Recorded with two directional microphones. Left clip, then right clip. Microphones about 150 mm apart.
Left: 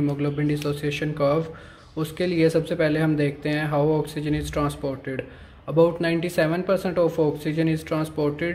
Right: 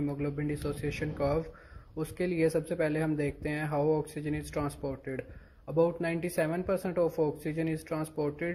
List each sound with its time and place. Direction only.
0.2 s speech: 35° right (ahead or behind)